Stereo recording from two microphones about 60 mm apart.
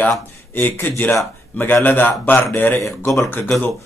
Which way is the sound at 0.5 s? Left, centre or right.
Left.